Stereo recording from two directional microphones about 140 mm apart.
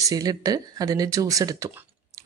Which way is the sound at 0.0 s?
25° right (ahead or behind).